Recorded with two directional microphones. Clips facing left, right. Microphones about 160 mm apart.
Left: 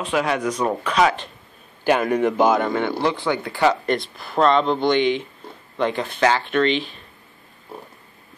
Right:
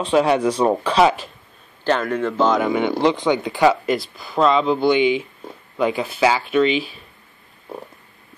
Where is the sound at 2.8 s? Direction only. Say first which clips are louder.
Right 4 dB; 20° right (ahead or behind).